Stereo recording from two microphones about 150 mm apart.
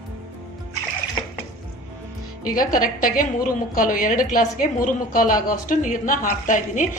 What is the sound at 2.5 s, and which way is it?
A woman's voice, 65° left (ahead or behind).